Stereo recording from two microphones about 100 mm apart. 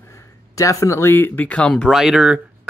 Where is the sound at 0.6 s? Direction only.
30° left (ahead or behind); by 2.0 s 10° left (ahead or behind).